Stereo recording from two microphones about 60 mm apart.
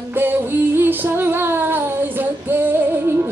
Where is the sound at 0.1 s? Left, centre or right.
Right.